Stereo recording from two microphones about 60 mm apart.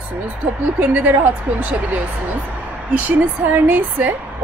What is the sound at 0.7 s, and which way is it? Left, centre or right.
A woman's voice, right.